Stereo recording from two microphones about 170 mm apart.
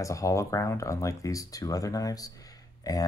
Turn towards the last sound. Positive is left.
turn(degrees=20)  # may be behind; listen again after turning